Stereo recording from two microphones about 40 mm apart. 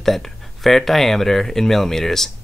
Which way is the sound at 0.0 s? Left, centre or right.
Centre.